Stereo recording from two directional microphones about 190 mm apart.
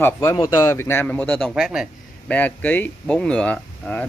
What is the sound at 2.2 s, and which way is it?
Speech, 10° left (ahead or behind).